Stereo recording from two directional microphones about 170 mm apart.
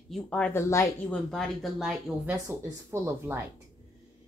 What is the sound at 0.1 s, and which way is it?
Speech, 10° left (ahead or behind).